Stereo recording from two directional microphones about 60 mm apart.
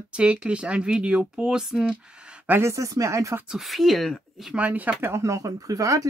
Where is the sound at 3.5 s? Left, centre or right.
Centre.